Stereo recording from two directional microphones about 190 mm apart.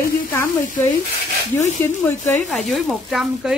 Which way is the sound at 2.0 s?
10° left (ahead or behind).